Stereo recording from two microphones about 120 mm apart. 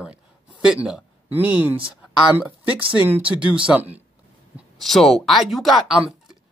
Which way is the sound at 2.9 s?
15° right (ahead or behind).